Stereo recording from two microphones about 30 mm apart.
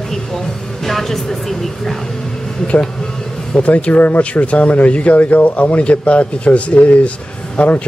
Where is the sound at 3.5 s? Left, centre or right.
Left.